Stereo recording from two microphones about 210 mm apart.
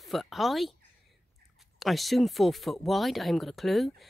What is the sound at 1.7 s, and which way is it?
Speech, centre (ahead or behind).